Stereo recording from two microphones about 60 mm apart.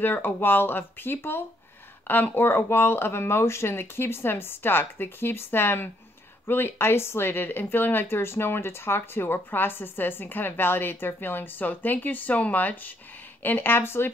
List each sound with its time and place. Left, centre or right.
0.0 s speech: left